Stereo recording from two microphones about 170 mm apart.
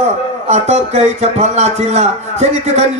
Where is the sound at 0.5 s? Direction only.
40° right (ahead or behind).